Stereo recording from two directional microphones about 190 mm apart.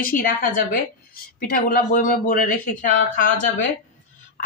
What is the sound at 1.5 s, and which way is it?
Speech, 45° left (ahead or behind).